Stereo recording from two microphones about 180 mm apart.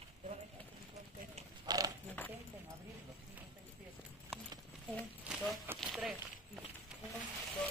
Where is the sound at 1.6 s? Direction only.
20° right (ahead or behind).